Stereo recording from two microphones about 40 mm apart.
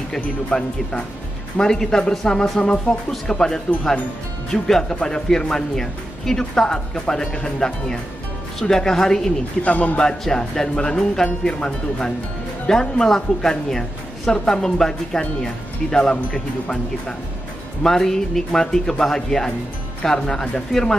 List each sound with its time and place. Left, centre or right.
0.5 s speech: left
9.6 s a man's voice: left
10.0 s a woman's voice: centre
17.8 s speech: centre